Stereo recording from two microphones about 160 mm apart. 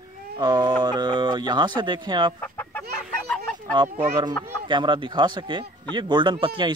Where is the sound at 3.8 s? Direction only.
30° right (ahead or behind).